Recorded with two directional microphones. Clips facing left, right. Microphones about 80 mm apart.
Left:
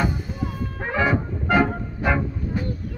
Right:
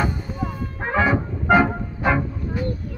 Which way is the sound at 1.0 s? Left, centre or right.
Centre.